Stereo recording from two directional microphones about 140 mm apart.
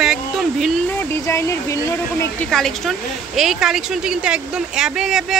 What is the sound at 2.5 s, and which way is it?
Speech, centre (ahead or behind).